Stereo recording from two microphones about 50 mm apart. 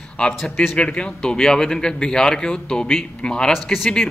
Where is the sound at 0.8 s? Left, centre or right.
Centre.